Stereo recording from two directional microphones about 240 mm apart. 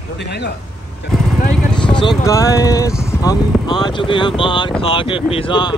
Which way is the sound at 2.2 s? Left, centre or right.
Centre.